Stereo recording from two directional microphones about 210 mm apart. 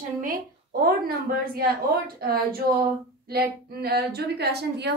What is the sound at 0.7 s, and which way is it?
A woman's voice, 45° right (ahead or behind).